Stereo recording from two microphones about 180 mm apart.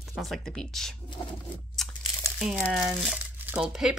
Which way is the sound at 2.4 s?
Centre (ahead or behind).